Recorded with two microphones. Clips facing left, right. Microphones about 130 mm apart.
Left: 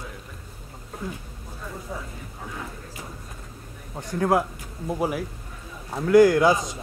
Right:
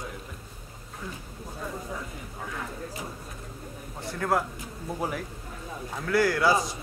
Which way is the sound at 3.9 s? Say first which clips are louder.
Left 5 dB; 15° left (ahead or behind).